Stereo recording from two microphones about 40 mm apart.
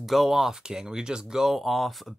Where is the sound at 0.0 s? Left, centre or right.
Centre.